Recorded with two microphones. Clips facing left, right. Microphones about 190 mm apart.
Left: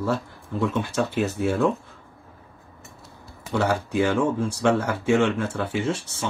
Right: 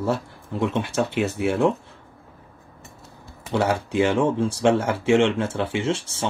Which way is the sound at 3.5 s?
25° right (ahead or behind).